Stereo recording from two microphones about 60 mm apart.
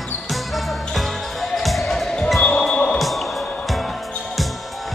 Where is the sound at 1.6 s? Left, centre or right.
Centre.